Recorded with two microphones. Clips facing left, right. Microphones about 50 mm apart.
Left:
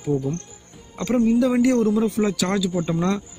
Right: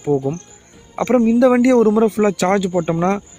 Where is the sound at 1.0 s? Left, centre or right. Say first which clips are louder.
Right 6 dB; right.